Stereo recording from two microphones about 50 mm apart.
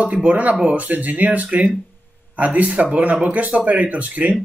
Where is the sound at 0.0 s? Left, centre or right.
Right.